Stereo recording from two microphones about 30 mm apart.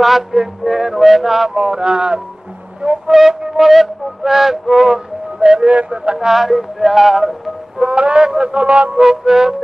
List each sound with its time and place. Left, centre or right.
0.3 s music: centre
1.6 s speech: right
3.1 s music: centre
5.4 s speech: right
6.3 s music: centre
7.8 s a sound: right
9.0 s speech: centre